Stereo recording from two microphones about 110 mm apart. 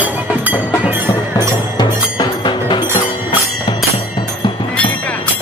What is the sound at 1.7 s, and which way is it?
Music, 45° left (ahead or behind).